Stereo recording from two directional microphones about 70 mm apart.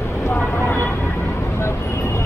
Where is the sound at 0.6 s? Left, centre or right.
Left.